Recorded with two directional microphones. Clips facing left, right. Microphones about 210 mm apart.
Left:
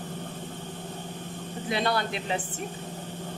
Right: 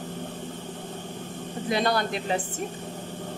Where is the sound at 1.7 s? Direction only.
45° right (ahead or behind).